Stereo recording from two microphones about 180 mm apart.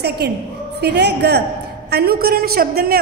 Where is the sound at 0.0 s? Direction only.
65° right (ahead or behind).